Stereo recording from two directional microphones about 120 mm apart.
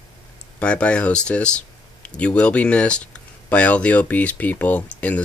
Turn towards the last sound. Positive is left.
turn(degrees=10)  # may be behind; listen again after turning